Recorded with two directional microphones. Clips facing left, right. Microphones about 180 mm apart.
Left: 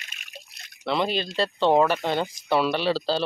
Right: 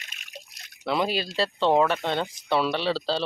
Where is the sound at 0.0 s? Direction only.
20° right (ahead or behind).